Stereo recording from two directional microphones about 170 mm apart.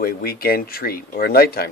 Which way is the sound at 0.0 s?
65° left (ahead or behind).